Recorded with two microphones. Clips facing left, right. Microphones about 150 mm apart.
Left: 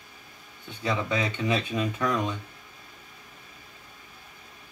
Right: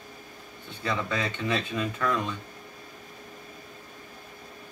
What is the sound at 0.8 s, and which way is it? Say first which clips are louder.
Speech: left 2 dB; 15° left (ahead or behind).